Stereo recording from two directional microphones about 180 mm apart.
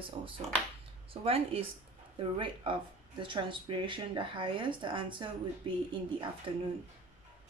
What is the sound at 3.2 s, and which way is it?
Speech, 25° right (ahead or behind).